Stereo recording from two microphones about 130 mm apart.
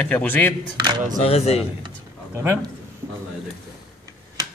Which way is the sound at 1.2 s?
50° left (ahead or behind).